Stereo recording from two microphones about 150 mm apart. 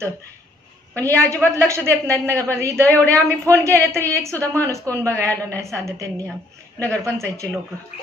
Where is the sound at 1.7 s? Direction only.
20° right (ahead or behind).